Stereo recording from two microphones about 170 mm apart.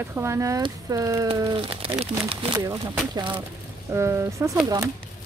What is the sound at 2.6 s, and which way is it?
Speech, 15° right (ahead or behind).